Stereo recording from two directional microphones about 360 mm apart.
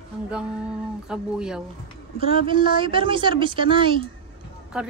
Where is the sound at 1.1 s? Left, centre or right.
Centre.